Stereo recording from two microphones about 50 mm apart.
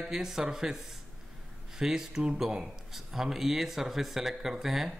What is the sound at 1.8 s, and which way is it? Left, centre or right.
Speech, centre.